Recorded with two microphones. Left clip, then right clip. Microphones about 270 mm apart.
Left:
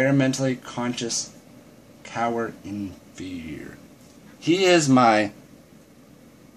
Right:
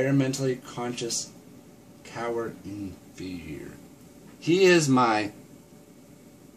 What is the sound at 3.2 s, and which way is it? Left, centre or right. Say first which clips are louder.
Speech: left 3 dB; left.